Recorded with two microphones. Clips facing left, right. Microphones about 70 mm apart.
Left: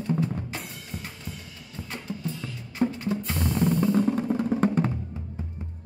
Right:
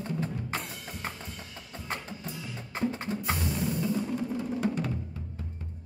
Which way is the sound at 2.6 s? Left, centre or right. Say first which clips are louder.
Left 5 dB; right.